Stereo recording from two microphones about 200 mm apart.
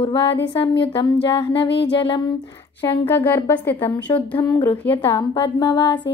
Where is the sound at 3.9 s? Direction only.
20° left (ahead or behind).